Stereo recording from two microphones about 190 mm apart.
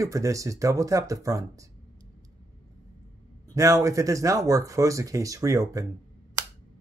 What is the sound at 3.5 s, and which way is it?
Speech, 15° right (ahead or behind).